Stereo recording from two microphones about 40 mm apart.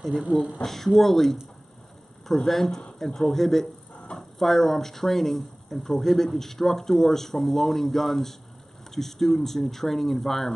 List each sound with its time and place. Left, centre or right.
0.7 s speech: centre